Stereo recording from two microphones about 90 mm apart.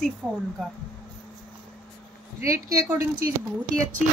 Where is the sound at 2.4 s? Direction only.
30° right (ahead or behind).